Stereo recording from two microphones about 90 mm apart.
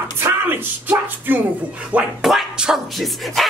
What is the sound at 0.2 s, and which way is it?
Speech, 25° right (ahead or behind).